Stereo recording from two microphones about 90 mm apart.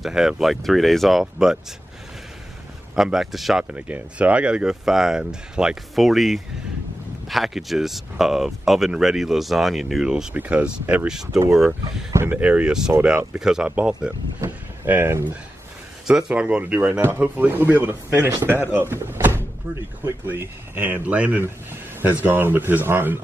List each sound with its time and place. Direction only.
0.0 s speech: 5° right (ahead or behind)
3.0 s speech: 5° right (ahead or behind)
3.7 s speech: 15° right (ahead or behind)
10.3 s speech: 15° right (ahead or behind)
12.3 s speech: 15° right (ahead or behind)
14.9 s speech: 25° right (ahead or behind)
16.1 s speech: 10° right (ahead or behind)